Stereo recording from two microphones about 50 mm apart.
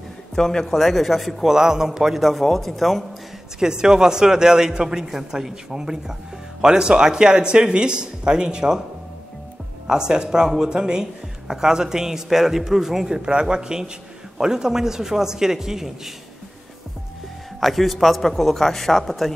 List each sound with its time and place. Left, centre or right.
0.4 s a man's voice: centre
1.5 s a man's voice: centre
3.5 s speech: centre
9.8 s speech: centre
17.6 s a man's voice: centre